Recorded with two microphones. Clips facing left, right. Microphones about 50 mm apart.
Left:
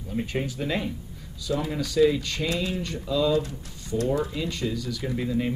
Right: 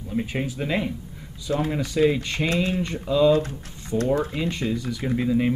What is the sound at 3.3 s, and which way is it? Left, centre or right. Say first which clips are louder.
Speech: right 2 dB; right.